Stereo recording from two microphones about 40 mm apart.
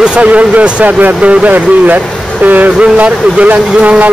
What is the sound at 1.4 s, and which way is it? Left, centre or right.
Speech, right.